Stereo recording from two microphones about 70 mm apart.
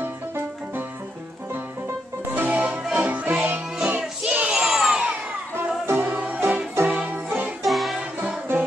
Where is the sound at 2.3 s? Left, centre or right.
Right.